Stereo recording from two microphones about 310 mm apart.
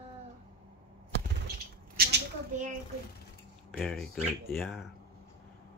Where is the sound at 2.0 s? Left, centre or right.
Right.